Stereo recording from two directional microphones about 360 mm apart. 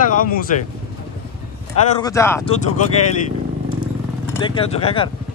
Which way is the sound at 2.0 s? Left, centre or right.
Centre.